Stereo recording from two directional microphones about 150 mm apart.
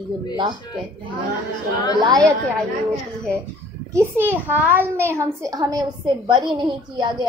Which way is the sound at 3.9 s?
15° right (ahead or behind).